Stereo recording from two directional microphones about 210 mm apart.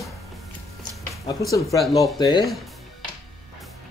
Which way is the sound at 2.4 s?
Centre (ahead or behind).